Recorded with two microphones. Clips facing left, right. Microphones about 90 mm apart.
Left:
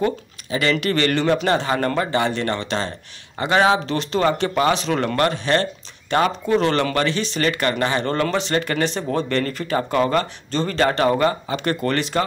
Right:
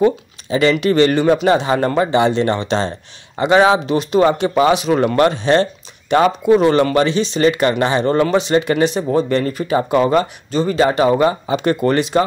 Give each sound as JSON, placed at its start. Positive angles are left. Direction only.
{"t": 0.0, "sound": "speech", "side_deg": -25}